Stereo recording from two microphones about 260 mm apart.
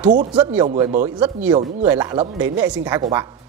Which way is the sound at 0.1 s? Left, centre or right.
Right.